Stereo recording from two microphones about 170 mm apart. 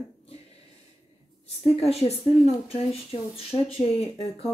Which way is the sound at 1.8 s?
35° left (ahead or behind).